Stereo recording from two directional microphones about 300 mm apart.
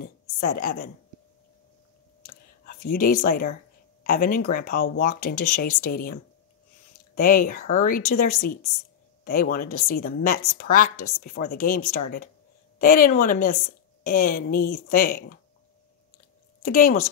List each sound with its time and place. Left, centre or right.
0.0 s a woman's voice: left
2.2 s a sound: left
4.0 s a woman's voice: left
7.2 s a woman's voice: left
16.6 s a woman's voice: left